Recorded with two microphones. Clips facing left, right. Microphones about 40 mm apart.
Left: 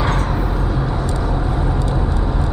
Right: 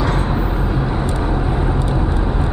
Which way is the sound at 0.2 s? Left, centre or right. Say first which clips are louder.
Right 1 dB; centre.